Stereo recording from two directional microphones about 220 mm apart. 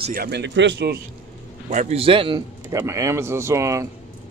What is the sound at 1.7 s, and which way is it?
Speech, 30° right (ahead or behind).